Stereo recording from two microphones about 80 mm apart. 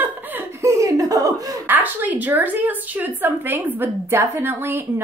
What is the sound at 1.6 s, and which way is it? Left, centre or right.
A woman's voice, right.